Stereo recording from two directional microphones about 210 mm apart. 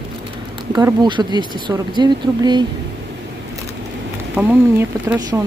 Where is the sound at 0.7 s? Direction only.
20° right (ahead or behind).